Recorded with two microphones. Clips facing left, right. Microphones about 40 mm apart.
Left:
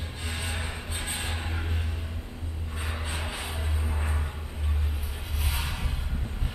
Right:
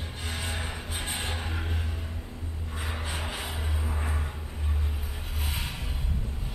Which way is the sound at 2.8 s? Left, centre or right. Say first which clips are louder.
Even; centre.